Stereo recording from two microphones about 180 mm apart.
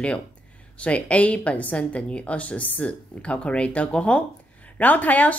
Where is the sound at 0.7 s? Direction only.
5° left (ahead or behind).